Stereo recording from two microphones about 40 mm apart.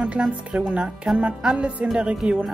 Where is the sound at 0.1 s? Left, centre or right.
Right.